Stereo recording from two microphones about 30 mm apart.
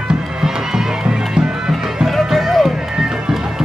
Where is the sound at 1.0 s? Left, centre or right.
Right.